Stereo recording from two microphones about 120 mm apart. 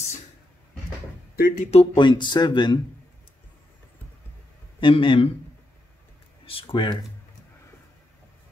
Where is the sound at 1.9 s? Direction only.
40° left (ahead or behind).